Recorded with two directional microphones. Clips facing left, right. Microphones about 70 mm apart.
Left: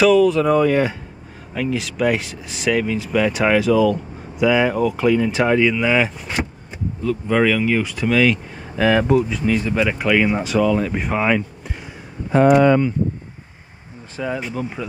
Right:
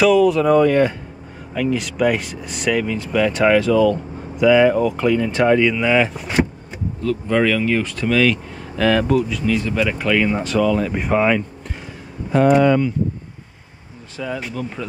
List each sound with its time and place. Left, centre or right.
0.0 s speech: centre
7.0 s speech: centre
12.3 s speech: left
14.1 s speech: left
14.8 s speech: centre